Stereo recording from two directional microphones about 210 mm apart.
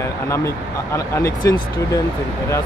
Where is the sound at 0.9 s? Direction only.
15° left (ahead or behind).